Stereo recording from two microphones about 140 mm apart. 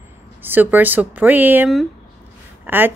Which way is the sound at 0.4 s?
15° right (ahead or behind).